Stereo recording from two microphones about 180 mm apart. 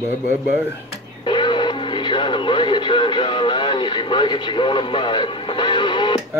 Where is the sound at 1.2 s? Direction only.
25° left (ahead or behind).